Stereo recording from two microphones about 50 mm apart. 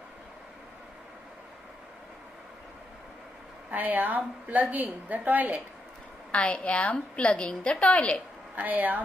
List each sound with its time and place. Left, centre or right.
3.7 s a woman's voice: right
6.3 s a woman's voice: left
8.5 s a woman's voice: right